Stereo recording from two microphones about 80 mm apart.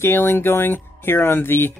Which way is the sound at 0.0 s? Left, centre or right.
Left.